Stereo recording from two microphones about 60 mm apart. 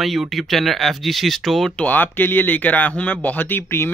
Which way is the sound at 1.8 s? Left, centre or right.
Left.